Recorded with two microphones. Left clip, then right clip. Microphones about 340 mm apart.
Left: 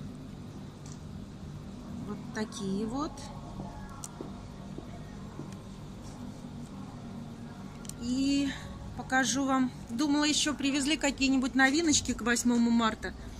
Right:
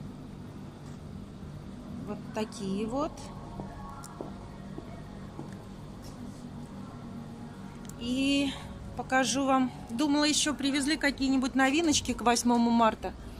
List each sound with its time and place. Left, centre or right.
2.3 s a man's voice: centre
8.0 s a man's voice: centre